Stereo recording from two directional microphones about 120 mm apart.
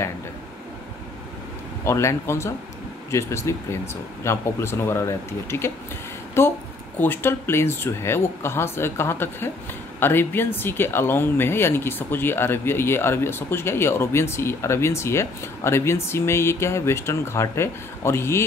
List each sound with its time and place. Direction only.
1.9 s speech: 20° left (ahead or behind)